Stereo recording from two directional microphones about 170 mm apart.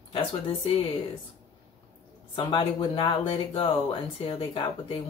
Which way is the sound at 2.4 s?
30° left (ahead or behind).